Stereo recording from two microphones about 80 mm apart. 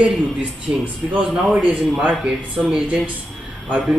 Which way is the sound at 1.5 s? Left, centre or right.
Centre.